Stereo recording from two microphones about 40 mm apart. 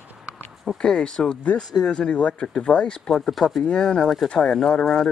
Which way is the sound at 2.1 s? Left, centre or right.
Left.